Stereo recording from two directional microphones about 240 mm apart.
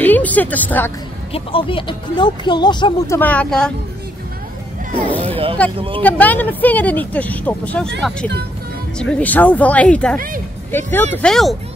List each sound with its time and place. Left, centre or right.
0.0 s a woman's voice: centre
1.3 s speech: left
3.2 s speech: centre
5.2 s a sound: right
5.8 s speech: right
6.0 s speech: centre
8.9 s speech: centre
10.1 s speech: right
10.7 s speech: centre